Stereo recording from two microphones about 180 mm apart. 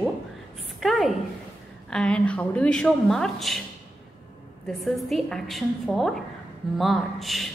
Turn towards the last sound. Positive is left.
turn(degrees=0)  # may be behind; listen again after turning